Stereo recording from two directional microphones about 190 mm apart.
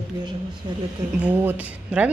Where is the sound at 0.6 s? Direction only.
20° right (ahead or behind).